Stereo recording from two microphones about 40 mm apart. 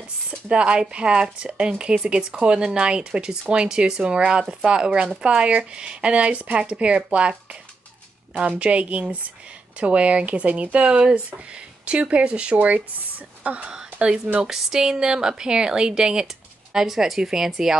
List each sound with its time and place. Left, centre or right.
0.5 s a woman's voice: right
8.4 s speech: right
12.5 s speech: right
13.7 s a woman's voice: right